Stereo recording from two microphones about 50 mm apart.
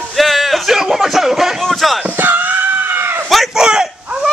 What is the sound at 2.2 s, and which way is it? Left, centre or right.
Screaming, right.